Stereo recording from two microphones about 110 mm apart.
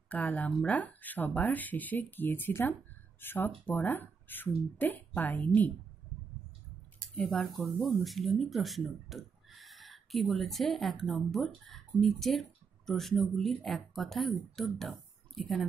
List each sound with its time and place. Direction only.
0.1 s speech: 15° left (ahead or behind)
7.2 s speech: centre (ahead or behind)